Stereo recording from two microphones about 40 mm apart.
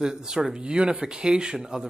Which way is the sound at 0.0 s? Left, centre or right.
Centre.